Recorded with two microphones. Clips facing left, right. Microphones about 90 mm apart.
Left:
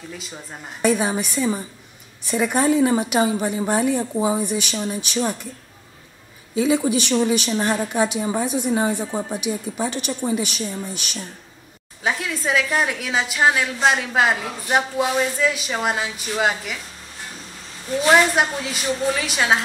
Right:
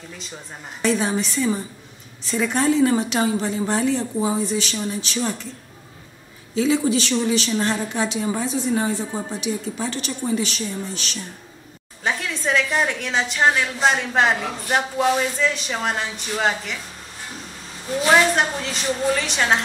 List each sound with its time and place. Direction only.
0.8 s a woman's voice: 10° left (ahead or behind)
6.5 s a woman's voice: 15° left (ahead or behind)
18.0 s a woman's voice: 5° left (ahead or behind)